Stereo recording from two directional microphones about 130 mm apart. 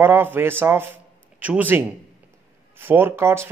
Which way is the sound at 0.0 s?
15° right (ahead or behind).